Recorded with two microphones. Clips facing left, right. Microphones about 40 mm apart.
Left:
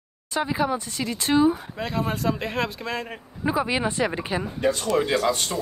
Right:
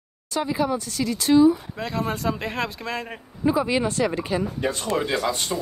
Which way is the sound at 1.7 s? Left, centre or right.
Centre.